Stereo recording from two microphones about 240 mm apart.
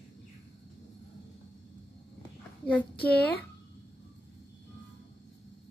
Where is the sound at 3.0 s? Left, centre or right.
Centre.